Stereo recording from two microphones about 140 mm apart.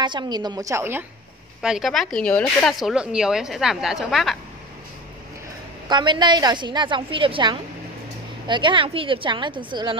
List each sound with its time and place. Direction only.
0.0 s a woman's voice: 30° right (ahead or behind)
1.6 s speech: 5° right (ahead or behind)
5.9 s a woman's voice: 30° right (ahead or behind)